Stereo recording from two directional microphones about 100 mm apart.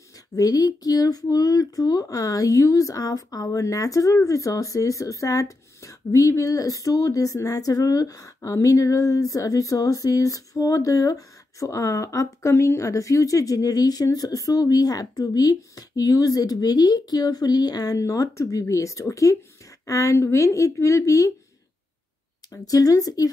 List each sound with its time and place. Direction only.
0.4 s speech: 40° left (ahead or behind)
22.5 s speech: 35° left (ahead or behind)